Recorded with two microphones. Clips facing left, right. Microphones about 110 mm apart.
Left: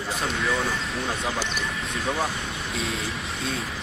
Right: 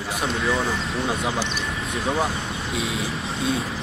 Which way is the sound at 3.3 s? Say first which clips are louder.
Right 9 dB; 25° right (ahead or behind).